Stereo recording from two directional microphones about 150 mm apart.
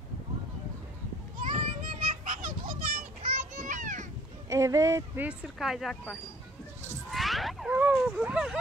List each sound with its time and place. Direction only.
1.4 s children playing: 65° right (ahead or behind)
4.5 s speech: 20° right (ahead or behind); by 6.1 s centre (ahead or behind)
7.1 s a sound: centre (ahead or behind)